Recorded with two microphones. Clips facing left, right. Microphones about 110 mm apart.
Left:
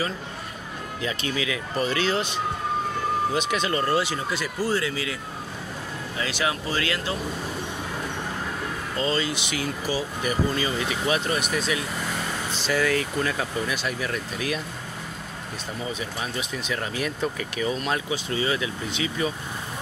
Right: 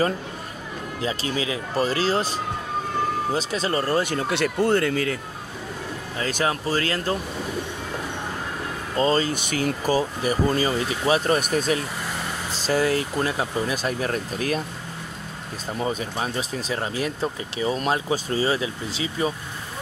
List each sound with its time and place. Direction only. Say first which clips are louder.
1.0 s speech: right 2 dB; 30° right (ahead or behind); by 5.1 s 50° right (ahead or behind)
6.1 s speech: right 3 dB; 40° right (ahead or behind)
8.9 s speech: right 5 dB; 40° right (ahead or behind)
12.6 s speech: right 2 dB; 30° right (ahead or behind)
13.8 s speech: right 3 dB; 40° right (ahead or behind)
15.8 s speech: right 6 dB; 40° right (ahead or behind)